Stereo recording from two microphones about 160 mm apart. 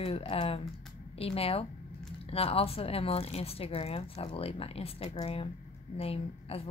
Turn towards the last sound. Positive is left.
turn(degrees=40)  # may be behind; listen again after turning